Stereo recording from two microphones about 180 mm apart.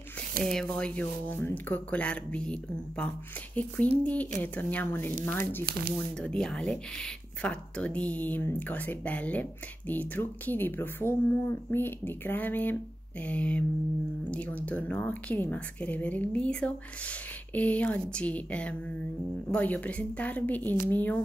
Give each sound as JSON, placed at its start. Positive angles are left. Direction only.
{"t": 0.4, "sound": "speech", "side_deg": 5}
{"t": 5.7, "sound": "speech", "side_deg": -60}
{"t": 6.2, "sound": "speech", "side_deg": 5}